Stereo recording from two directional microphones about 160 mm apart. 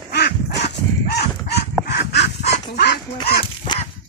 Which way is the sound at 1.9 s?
90° left.